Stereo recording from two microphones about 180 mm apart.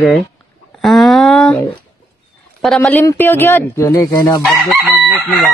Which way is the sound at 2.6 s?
5° left (ahead or behind).